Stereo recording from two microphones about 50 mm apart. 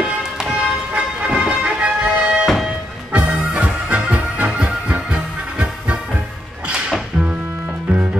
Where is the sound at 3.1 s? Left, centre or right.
Right.